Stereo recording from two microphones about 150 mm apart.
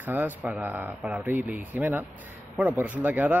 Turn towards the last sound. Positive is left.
turn(degrees=-10)  # may be behind; listen again after turning